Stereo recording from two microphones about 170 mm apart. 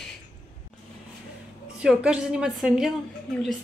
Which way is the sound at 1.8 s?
5° right (ahead or behind).